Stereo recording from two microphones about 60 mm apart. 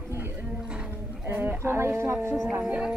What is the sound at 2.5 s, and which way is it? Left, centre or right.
Speech, right.